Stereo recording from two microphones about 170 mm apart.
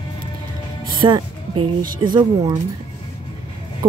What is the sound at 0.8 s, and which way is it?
Music, 25° right (ahead or behind).